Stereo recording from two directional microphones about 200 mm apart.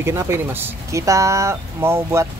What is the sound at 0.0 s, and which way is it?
Speech, 15° right (ahead or behind).